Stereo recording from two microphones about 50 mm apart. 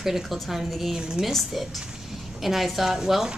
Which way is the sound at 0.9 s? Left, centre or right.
Centre.